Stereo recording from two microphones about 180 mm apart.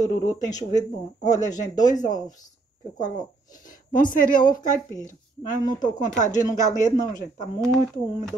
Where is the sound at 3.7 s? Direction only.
50° left (ahead or behind).